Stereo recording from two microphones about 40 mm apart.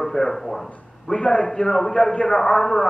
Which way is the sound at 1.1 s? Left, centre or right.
Left.